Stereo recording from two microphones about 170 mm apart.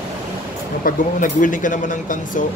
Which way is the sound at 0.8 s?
50° left (ahead or behind).